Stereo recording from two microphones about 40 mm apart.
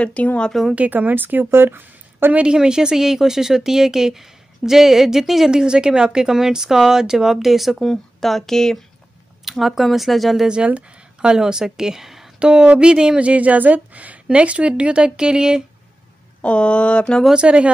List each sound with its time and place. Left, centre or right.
0.0 s speech: left
0.7 s speech: right
2.3 s speech: right
5.5 s speech: right; by 7.7 s centre
7.7 s speech: centre
9.4 s speech: centre
11.1 s speech: centre
12.4 s speech: right
13.2 s a woman's voice: right; by 15.6 s centre
16.3 s speech: left
17.3 s speech: right